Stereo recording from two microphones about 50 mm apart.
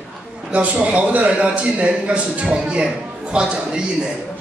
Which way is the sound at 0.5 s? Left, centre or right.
Right.